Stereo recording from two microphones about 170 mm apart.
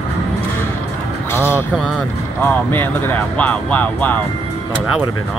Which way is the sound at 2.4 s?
10° left (ahead or behind).